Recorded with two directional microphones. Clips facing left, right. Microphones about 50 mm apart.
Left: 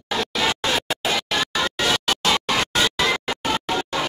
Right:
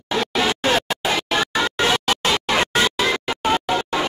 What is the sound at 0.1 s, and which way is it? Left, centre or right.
Music, centre.